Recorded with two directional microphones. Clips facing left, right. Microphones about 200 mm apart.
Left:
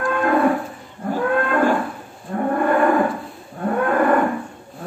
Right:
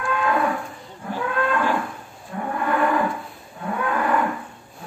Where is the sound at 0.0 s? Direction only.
50° left (ahead or behind).